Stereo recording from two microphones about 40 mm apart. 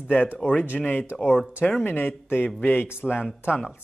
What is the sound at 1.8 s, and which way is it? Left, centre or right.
Speech, left.